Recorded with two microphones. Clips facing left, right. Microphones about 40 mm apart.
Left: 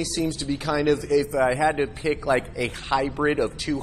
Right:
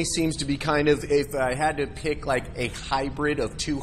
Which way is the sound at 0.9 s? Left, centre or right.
Centre.